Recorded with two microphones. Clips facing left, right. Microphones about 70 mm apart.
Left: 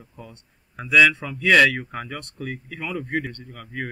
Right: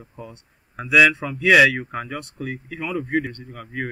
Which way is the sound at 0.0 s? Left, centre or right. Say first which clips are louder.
Right 4 dB; centre.